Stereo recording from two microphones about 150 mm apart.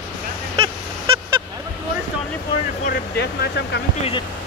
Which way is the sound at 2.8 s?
90° left.